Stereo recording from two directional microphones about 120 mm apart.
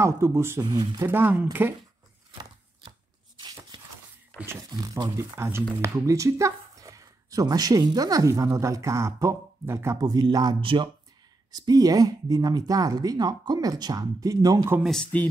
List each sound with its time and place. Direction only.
0.0 s speech: 25° right (ahead or behind)
0.6 s speech: 35° right (ahead or behind)
1.0 s speech: 15° right (ahead or behind)
3.3 s a sound: 35° right (ahead or behind)
4.7 s a woman's voice: 30° right (ahead or behind)
9.9 s speech: 35° right (ahead or behind)
14.8 s speech: centre (ahead or behind)